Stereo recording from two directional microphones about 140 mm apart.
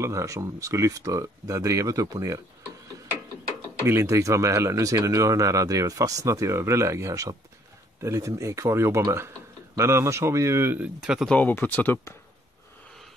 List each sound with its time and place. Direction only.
0.0 s speech: 20° right (ahead or behind)
3.8 s speech: 20° right (ahead or behind)
11.0 s speech: 5° right (ahead or behind)
11.2 s speech: 10° left (ahead or behind)